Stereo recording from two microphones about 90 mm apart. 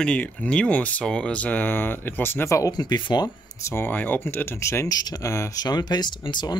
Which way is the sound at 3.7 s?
20° left (ahead or behind).